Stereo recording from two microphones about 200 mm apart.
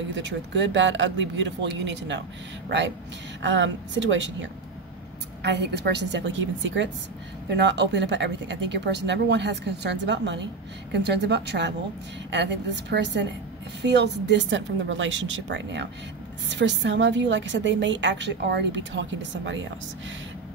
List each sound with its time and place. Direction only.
0.1 s a woman's voice: 65° right (ahead or behind)
3.4 s a woman's voice: 65° right (ahead or behind)